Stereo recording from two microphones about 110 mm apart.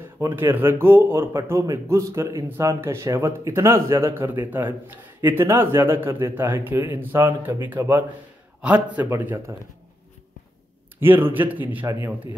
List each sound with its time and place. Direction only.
0.0 s a man's voice: 20° right (ahead or behind)
11.0 s a man's voice: 20° right (ahead or behind)